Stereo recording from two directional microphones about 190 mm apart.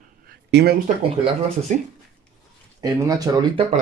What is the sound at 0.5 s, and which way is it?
Speech, 60° right (ahead or behind).